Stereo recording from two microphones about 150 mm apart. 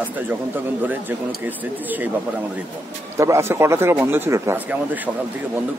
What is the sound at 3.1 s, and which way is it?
Speech, 20° right (ahead or behind).